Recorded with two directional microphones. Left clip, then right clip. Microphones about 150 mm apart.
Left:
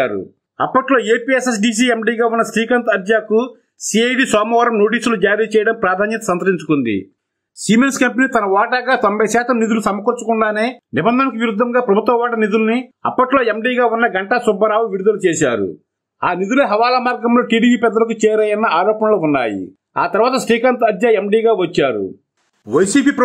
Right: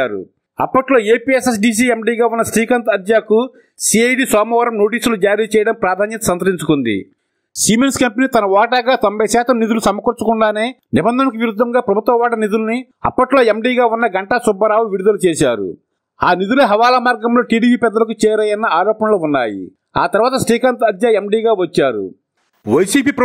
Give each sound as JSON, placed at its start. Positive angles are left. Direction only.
{"t": 0.0, "sound": "a man's voice", "side_deg": -35}
{"t": 7.6, "sound": "speech", "side_deg": -50}